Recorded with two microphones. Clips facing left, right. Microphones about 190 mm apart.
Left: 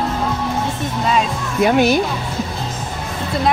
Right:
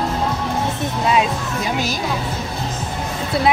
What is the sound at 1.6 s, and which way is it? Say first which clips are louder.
Speech: left 12 dB; 60° left (ahead or behind).